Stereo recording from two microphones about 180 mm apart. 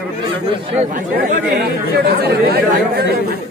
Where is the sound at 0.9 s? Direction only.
55° right (ahead or behind).